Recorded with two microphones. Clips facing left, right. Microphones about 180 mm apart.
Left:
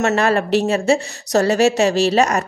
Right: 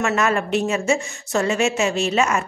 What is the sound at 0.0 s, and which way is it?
A woman's voice, 35° left (ahead or behind).